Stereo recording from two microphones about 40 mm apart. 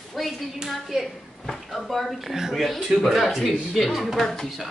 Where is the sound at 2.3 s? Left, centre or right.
Centre.